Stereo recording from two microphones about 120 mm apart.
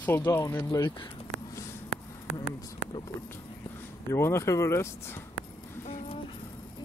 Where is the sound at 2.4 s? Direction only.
50° left (ahead or behind).